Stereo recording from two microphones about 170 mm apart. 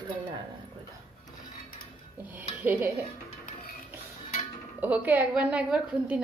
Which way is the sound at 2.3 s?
10° right (ahead or behind).